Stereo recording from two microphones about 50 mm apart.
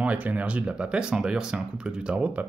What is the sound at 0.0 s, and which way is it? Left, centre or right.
Speech, right.